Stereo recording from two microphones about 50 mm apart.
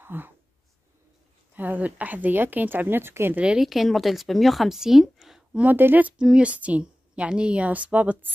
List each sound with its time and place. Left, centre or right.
0.0 s speech: right
1.5 s a woman's voice: right
3.5 s a woman's voice: centre
5.6 s a woman's voice: right
6.1 s a woman's voice: centre